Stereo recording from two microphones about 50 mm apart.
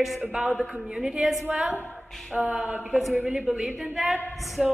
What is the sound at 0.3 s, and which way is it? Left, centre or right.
A woman's voice, centre.